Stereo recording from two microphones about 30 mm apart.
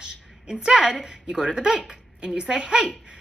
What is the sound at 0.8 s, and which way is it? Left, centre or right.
Speech, centre.